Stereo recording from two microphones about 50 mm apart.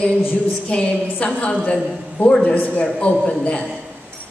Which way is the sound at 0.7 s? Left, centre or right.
Left.